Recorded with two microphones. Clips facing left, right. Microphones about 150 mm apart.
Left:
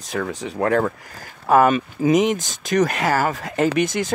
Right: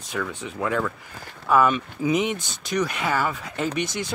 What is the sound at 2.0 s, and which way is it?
Speech, 90° left.